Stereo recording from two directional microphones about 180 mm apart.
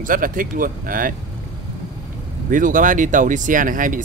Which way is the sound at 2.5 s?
45° right (ahead or behind).